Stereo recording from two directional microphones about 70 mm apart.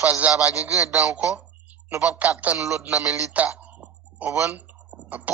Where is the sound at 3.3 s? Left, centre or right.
Centre.